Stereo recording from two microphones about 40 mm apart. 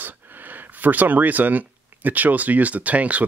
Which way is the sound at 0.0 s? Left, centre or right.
Right.